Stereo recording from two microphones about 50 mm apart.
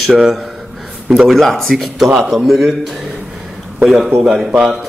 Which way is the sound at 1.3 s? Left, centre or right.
Centre.